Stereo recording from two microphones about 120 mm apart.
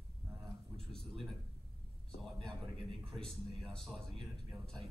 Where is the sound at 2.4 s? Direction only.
5° left (ahead or behind).